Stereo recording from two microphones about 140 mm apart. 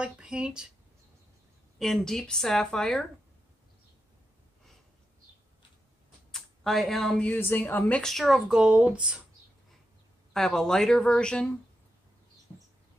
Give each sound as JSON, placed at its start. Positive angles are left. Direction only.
{"t": 0.0, "sound": "speech", "side_deg": -5}
{"t": 1.8, "sound": "speech", "side_deg": 5}
{"t": 6.3, "sound": "speech", "side_deg": 0}
{"t": 10.3, "sound": "speech", "side_deg": 5}